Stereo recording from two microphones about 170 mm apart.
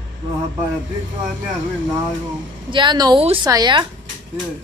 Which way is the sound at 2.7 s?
25° right (ahead or behind).